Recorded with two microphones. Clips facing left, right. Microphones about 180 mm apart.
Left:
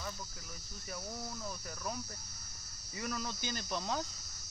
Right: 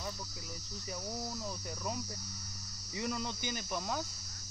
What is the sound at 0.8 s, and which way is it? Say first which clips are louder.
Speech: right 2 dB; 15° right (ahead or behind).